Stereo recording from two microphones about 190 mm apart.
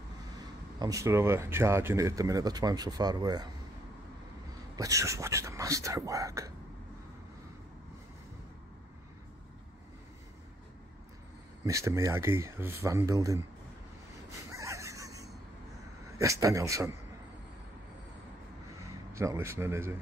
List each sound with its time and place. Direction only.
0.7 s speech: 15° right (ahead or behind)
4.7 s speech: 15° right (ahead or behind)
11.6 s speech: 15° right (ahead or behind)
14.5 s a sound: 15° right (ahead or behind)
16.2 s speech: 15° right (ahead or behind)
19.1 s speech: 15° right (ahead or behind)